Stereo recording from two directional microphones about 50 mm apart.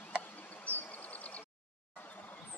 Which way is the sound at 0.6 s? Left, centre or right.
Left.